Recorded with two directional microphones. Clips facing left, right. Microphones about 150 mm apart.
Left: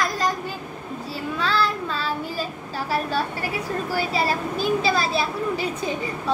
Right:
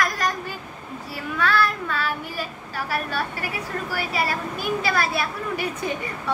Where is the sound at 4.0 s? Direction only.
30° left (ahead or behind).